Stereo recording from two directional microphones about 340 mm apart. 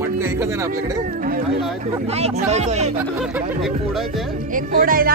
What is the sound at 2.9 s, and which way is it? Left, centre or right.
Music, centre.